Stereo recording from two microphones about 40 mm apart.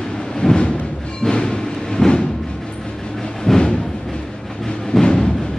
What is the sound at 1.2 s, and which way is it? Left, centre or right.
Music, centre.